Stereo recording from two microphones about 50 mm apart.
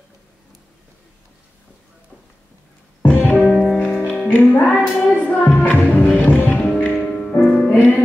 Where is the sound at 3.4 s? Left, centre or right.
Centre.